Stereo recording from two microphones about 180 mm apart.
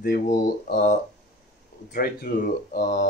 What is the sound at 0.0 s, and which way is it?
Speech, 55° left (ahead or behind).